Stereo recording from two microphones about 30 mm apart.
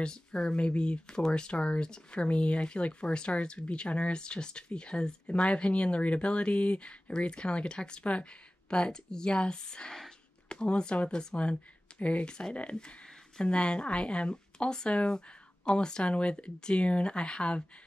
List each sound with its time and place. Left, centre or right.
0.0 s speech: left
8.0 s speech: left
8.6 s speech: left
12.0 s speech: left
12.3 s speech: left